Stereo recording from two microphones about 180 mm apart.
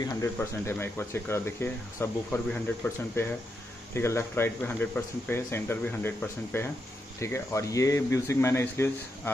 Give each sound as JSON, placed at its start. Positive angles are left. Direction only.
{"t": 0.0, "sound": "speech", "side_deg": 15}